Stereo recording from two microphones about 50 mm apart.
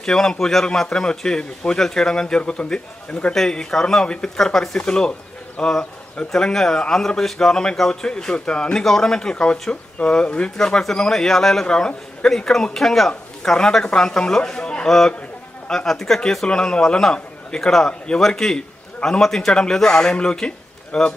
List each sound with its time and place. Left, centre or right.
0.0 s a man's voice: centre
8.8 s a man's voice: centre
10.6 s a man's voice: centre